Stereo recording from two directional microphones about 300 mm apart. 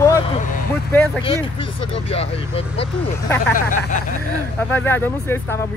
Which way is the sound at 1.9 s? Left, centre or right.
Centre.